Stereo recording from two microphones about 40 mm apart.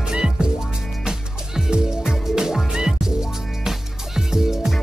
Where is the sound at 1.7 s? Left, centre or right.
Centre.